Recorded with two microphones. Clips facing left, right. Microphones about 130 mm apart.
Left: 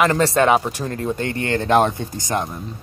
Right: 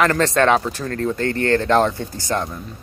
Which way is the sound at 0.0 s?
10° left (ahead or behind).